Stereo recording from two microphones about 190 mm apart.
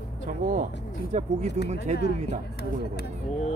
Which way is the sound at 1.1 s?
35° right (ahead or behind).